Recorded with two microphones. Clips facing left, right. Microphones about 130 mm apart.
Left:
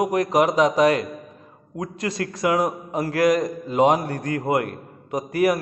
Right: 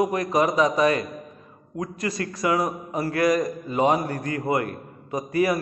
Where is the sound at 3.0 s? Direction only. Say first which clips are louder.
Left 2 dB; 75° left (ahead or behind).